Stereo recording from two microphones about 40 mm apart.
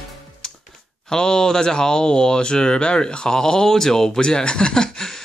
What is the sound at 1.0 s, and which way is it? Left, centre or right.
Speech, centre.